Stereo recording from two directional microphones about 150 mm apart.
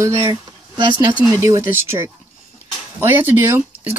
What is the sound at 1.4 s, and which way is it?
Speech, 20° right (ahead or behind).